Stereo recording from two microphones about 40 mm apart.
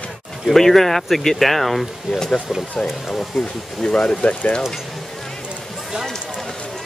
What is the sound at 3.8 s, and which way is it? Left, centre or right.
Speech, centre.